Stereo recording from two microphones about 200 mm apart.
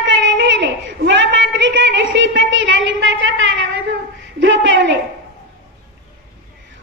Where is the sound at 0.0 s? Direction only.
65° right (ahead or behind).